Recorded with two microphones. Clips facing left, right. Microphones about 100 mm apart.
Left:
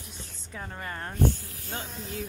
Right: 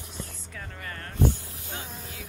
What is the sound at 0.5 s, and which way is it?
Speech, 30° left (ahead or behind).